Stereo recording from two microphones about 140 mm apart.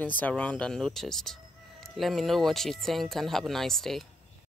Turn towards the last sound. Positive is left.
turn(degrees=0)  # may be behind; listen again after turning